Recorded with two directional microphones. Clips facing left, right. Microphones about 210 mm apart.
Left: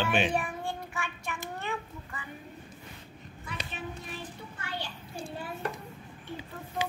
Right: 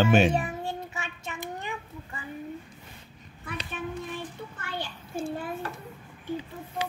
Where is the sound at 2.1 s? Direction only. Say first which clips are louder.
Right 3 dB; 25° right (ahead or behind).